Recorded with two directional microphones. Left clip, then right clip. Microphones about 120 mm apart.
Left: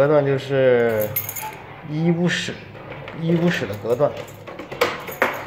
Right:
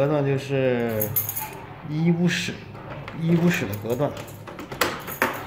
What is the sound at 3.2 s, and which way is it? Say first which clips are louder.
Speech: left 3 dB; 10° right (ahead or behind).